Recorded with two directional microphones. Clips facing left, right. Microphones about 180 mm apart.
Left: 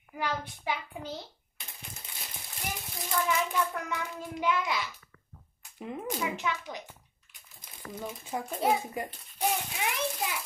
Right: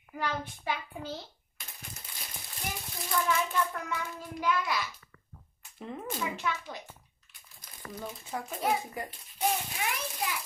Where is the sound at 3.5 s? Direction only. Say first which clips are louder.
Left 1 dB; 15° left (ahead or behind).